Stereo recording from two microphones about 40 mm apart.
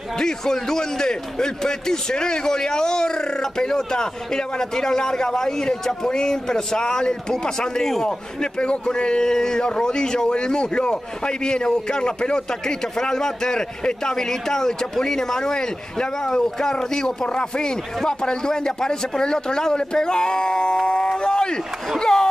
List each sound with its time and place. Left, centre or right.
0.2 s a man's voice: centre
8.4 s speech: left